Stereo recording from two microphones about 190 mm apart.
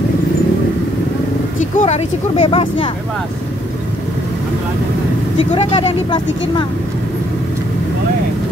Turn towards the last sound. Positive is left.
turn(degrees=25)  # may be behind; listen again after turning